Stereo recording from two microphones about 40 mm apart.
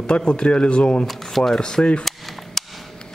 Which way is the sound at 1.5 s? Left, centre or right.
Centre.